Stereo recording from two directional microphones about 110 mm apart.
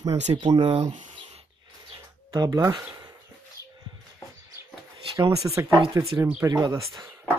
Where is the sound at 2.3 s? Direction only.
35° right (ahead or behind).